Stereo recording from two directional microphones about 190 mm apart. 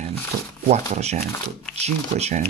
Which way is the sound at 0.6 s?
35° right (ahead or behind).